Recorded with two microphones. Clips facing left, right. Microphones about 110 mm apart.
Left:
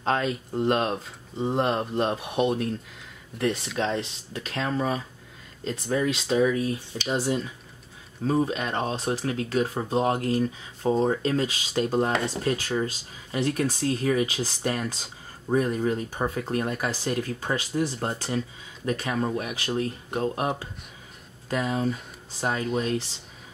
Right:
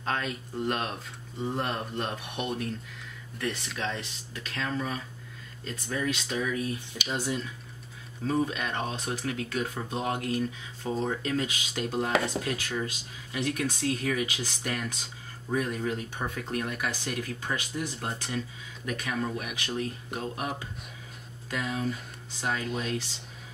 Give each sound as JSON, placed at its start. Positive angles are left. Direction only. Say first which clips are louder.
{"t": 0.0, "sound": "speech", "louder": "left 6 dB", "side_deg": 30}